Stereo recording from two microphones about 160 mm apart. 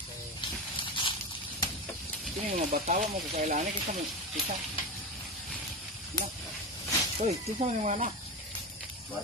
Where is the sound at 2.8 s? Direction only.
55° right (ahead or behind).